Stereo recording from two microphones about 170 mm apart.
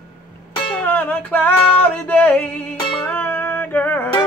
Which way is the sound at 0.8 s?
10° left (ahead or behind).